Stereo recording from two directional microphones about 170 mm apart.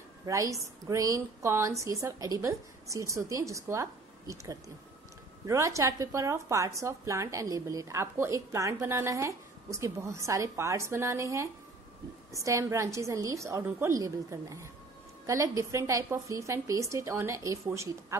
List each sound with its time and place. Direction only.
0.3 s a woman's voice: 20° right (ahead or behind)